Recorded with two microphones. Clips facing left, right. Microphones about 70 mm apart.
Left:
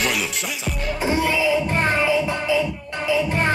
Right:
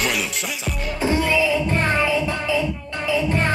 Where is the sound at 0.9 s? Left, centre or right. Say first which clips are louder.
Right 2 dB; centre.